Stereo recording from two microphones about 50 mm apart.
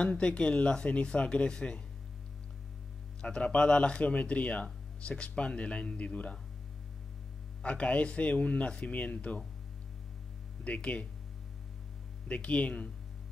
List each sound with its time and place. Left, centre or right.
0.0 s speech: left
3.2 s speech: centre
7.6 s speech: left
10.6 s speech: left
12.3 s speech: left